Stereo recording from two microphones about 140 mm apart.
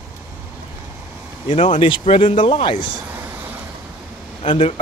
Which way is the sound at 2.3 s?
60° left (ahead or behind).